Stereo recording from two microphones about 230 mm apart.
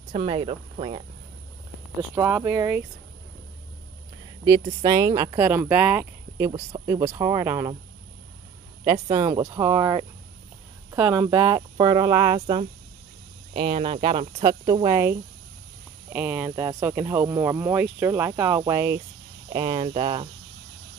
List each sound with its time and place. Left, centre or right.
0.1 s speech: right
2.1 s speech: centre
4.5 s speech: centre
8.8 s speech: right
9.1 s speech: centre